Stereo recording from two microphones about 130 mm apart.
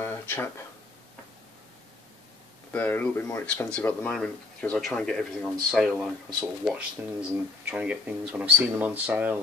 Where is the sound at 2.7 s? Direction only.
15° left (ahead or behind).